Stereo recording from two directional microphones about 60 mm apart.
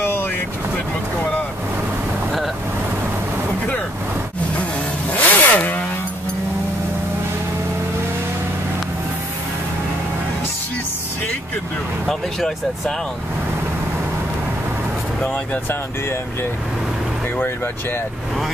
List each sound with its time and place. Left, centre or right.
0.0 s boat: left
5.1 s motorcycle: left
12.1 s speech: centre
15.2 s speech: left